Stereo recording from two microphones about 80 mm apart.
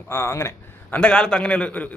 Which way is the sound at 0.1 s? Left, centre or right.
Left.